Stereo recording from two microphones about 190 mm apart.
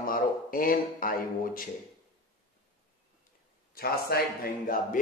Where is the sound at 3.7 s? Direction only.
50° left (ahead or behind).